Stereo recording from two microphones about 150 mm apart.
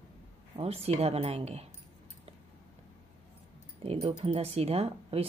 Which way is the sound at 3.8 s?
40° right (ahead or behind).